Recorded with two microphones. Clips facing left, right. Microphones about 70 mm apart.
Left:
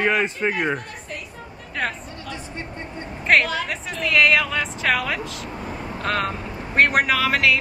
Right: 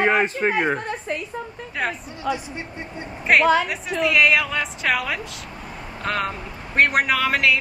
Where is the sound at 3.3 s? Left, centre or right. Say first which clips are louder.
Right 3 dB; centre.